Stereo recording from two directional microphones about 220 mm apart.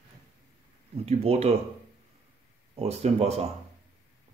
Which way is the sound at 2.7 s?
30° right (ahead or behind).